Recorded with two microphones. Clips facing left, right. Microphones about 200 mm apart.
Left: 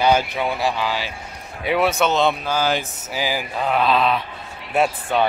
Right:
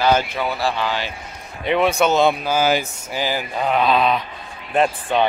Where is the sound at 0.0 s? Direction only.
15° left (ahead or behind).